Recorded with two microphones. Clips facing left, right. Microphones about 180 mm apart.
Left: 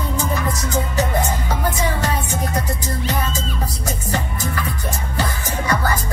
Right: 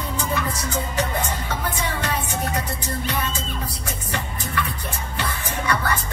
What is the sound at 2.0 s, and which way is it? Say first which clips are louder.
Music: left 3 dB; 35° left (ahead or behind).